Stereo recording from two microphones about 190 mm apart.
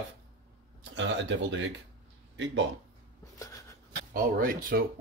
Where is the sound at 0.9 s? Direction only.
75° right (ahead or behind).